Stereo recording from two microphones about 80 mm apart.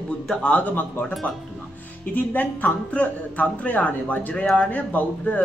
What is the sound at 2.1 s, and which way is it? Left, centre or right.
Speech, left.